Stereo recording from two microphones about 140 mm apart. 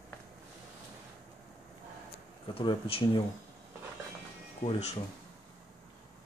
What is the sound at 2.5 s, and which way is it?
Speech, 40° left (ahead or behind).